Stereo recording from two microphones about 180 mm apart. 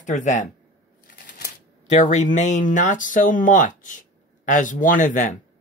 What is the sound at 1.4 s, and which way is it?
Speech, 40° left (ahead or behind).